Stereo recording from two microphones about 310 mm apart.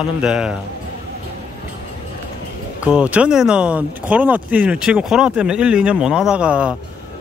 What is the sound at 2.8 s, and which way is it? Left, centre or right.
Speech, centre.